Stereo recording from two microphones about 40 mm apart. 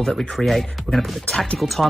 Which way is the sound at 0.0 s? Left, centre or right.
Centre.